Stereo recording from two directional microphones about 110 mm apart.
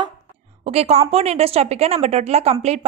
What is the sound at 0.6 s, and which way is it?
A woman's voice, 70° right (ahead or behind).